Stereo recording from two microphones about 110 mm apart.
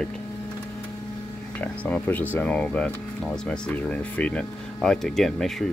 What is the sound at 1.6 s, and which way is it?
Speech, 10° left (ahead or behind).